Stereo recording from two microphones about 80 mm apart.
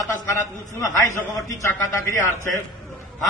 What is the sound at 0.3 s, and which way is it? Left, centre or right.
A man's voice, left.